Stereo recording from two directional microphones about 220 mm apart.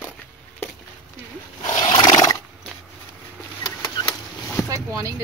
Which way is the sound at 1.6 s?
20° left (ahead or behind).